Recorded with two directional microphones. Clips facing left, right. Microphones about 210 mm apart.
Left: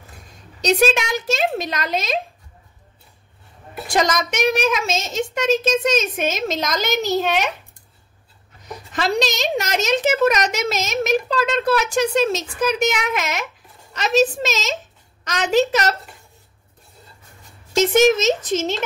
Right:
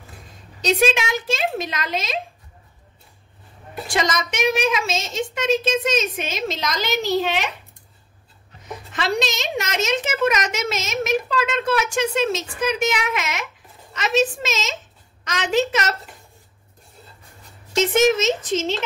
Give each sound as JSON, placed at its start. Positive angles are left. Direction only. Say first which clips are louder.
{"t": 0.6, "sound": "a woman's voice", "louder": "left 2 dB", "side_deg": 40}
{"t": 3.8, "sound": "a woman's voice", "louder": "left 3 dB", "side_deg": 45}
{"t": 8.9, "sound": "a woman's voice", "louder": "left 3 dB", "side_deg": 40}
{"t": 18.1, "sound": "a woman's voice", "louder": "left 2 dB", "side_deg": 40}